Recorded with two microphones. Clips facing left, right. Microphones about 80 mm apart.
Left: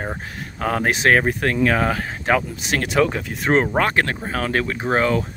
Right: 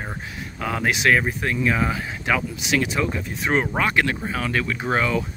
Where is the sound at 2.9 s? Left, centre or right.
Left.